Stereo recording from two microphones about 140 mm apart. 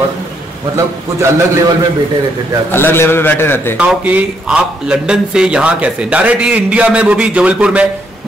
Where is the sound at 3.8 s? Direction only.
10° right (ahead or behind).